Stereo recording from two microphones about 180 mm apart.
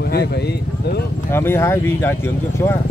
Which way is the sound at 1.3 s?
15° left (ahead or behind).